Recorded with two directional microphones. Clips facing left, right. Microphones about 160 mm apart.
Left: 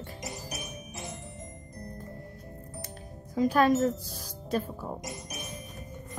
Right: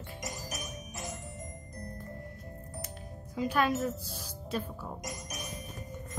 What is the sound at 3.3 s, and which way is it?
Speech, 40° left (ahead or behind).